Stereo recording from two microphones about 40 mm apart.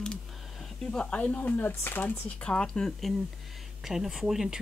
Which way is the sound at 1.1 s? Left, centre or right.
Left.